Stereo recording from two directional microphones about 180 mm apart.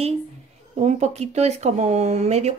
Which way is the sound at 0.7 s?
40° right (ahead or behind).